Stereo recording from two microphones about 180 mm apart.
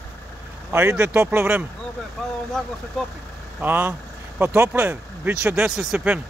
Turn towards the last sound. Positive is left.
turn(degrees=-5)  # may be behind; listen again after turning